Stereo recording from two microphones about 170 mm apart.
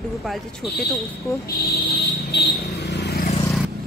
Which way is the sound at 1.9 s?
75° left (ahead or behind).